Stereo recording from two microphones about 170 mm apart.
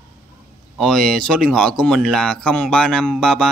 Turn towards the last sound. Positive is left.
turn(degrees=5)  # may be behind; listen again after turning